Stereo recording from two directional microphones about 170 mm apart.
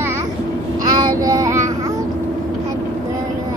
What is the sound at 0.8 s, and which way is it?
Child singing, 25° right (ahead or behind).